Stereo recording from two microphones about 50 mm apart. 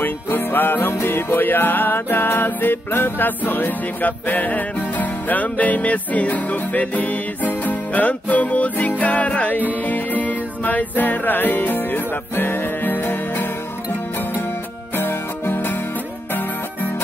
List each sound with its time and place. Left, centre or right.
0.0 s music: left
15.0 s music: left